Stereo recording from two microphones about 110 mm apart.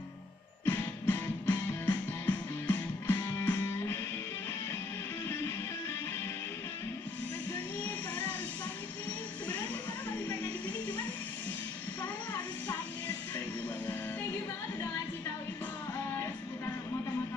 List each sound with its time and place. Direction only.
0.7 s music: 15° left (ahead or behind)